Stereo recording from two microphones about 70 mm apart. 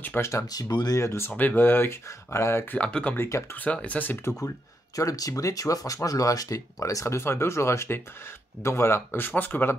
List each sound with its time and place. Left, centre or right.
0.2 s speech: left
0.5 s speech: left
0.9 s speech: left
1.3 s speech: left
2.0 s speech: left
2.8 s speech: centre
3.3 s speech: left
3.5 s speech: left
4.9 s speech: left